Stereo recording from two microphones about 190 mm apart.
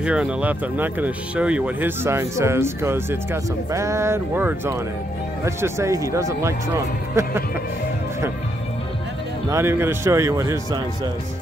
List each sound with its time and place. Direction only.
0.0 s speech: 5° right (ahead or behind)
9.5 s speech: 15° right (ahead or behind)